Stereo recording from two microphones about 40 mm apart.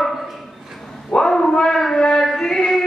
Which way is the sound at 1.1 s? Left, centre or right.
Centre.